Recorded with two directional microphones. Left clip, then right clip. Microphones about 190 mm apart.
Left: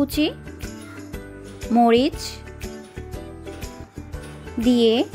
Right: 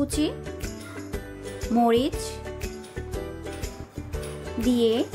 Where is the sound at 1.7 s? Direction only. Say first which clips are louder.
Left 5 dB; 25° left (ahead or behind).